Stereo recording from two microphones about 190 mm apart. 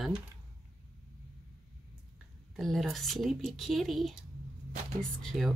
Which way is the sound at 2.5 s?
Centre (ahead or behind).